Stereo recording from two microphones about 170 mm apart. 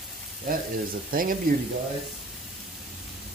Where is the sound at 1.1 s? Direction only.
55° right (ahead or behind).